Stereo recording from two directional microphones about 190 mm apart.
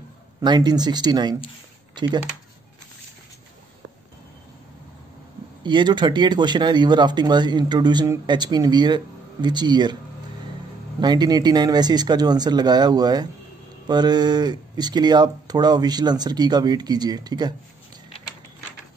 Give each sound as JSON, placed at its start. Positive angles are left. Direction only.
{"t": 0.4, "sound": "speech", "side_deg": -20}
{"t": 5.6, "sound": "speech", "side_deg": -25}
{"t": 11.0, "sound": "speech", "side_deg": -20}